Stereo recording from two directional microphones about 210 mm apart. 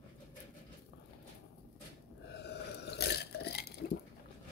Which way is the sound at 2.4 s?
50° left (ahead or behind).